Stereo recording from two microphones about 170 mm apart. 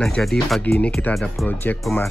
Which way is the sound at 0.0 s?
5° left (ahead or behind).